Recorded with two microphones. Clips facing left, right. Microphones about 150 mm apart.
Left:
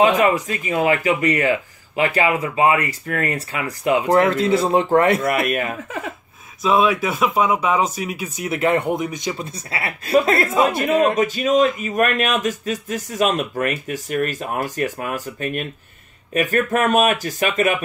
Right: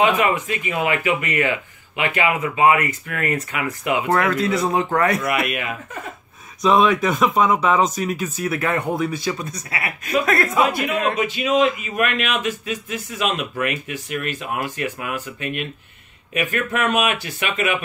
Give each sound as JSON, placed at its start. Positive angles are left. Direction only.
{"t": 0.1, "sound": "speech", "side_deg": 40}
{"t": 5.3, "sound": "speech", "side_deg": 45}
{"t": 6.6, "sound": "speech", "side_deg": 5}
{"t": 10.8, "sound": "speech", "side_deg": 40}